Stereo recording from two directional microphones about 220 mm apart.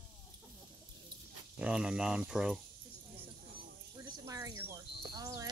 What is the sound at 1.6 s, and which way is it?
Speech, 5° right (ahead or behind).